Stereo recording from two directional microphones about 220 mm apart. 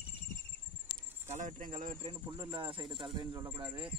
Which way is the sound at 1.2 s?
35° right (ahead or behind).